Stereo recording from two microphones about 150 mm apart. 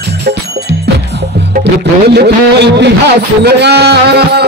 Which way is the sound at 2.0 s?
90° right.